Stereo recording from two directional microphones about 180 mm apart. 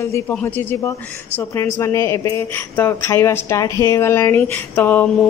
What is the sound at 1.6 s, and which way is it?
Speech, 15° left (ahead or behind).